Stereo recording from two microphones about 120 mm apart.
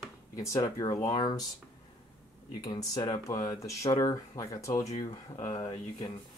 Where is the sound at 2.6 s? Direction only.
30° left (ahead or behind).